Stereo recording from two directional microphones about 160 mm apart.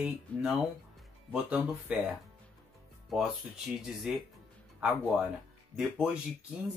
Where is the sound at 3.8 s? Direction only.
Centre (ahead or behind).